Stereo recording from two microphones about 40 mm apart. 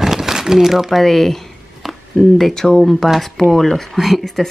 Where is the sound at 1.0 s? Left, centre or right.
Centre.